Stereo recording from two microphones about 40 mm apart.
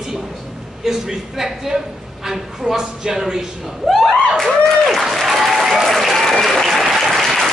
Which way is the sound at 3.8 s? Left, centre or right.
Centre.